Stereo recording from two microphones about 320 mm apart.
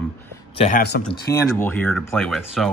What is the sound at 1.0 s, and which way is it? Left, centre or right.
Speech, centre.